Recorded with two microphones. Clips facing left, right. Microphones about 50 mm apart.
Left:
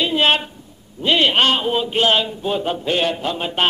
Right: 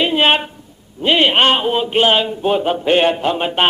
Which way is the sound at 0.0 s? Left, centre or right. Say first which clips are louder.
Right 3 dB; right.